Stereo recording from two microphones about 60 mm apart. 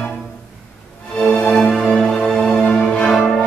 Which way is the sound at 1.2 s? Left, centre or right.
Centre.